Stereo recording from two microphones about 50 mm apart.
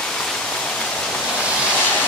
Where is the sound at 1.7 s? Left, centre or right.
Left.